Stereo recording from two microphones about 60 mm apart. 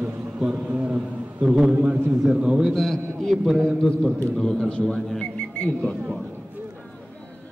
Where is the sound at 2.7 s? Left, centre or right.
Centre.